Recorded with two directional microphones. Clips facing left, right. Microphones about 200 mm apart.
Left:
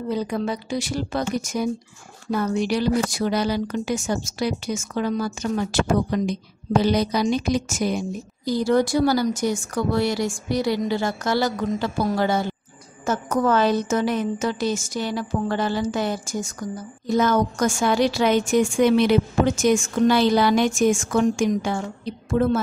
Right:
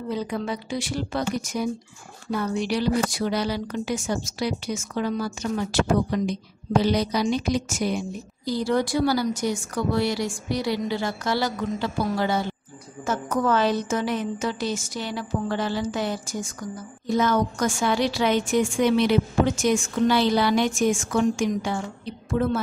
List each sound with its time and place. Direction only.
0.1 s a woman's voice: 40° left (ahead or behind)
2.6 s a woman's voice: 45° left (ahead or behind)